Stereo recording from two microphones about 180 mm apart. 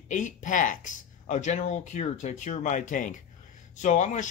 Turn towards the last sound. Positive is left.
turn(degrees=45)  # may be behind; listen again after turning